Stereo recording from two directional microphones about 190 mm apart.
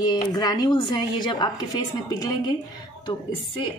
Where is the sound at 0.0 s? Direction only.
20° left (ahead or behind).